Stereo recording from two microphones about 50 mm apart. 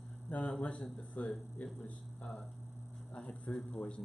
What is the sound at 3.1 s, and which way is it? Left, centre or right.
Speech, left.